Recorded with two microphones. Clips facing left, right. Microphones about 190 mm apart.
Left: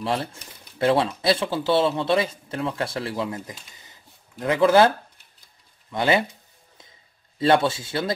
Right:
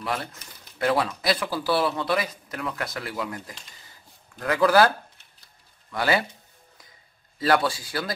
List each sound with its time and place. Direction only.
0.0 s speech: 30° left (ahead or behind)
7.3 s a man's voice: 25° left (ahead or behind)